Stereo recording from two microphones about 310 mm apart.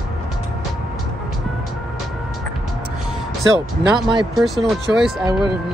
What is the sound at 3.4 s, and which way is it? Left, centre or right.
Speech, centre.